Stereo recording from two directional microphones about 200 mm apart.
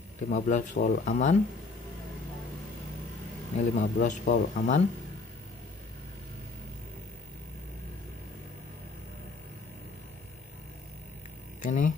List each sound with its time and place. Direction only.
0.3 s speech: 40° left (ahead or behind)
3.5 s speech: 40° left (ahead or behind)
11.6 s speech: 40° left (ahead or behind)